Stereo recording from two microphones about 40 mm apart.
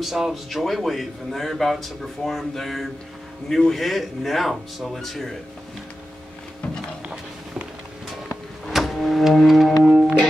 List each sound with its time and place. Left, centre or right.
0.0 s a man's voice: centre
7.0 s a sound: right
8.6 s music: centre